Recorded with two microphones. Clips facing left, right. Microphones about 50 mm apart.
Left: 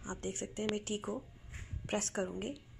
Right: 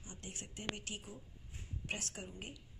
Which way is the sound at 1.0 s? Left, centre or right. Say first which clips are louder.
Left 12 dB; left.